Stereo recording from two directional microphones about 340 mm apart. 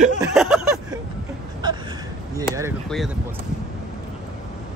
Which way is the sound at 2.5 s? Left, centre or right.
Centre.